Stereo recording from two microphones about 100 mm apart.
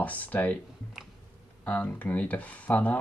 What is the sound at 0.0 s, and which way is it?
Speech, 15° left (ahead or behind).